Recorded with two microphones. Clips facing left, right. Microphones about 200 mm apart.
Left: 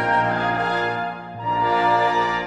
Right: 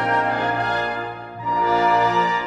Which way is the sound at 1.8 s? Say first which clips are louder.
Right 1 dB; 10° left (ahead or behind).